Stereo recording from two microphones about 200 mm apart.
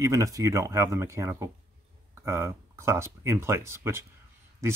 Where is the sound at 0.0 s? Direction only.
15° right (ahead or behind).